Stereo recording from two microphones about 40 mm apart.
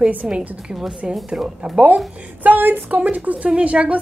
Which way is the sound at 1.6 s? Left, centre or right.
Right.